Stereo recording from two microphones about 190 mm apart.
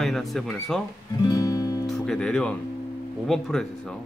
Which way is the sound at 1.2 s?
20° left (ahead or behind).